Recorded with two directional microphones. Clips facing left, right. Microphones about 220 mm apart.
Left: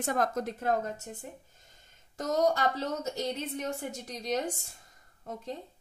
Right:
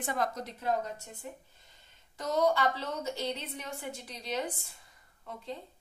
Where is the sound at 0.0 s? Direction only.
45° left (ahead or behind).